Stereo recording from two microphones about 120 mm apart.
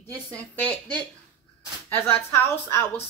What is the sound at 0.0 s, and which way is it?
Speech, 10° left (ahead or behind).